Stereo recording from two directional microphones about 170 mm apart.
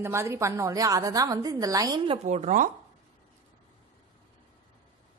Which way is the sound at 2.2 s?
45° right (ahead or behind).